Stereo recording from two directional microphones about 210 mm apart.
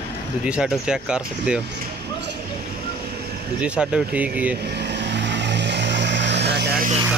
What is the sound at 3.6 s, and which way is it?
Speech, 5° right (ahead or behind).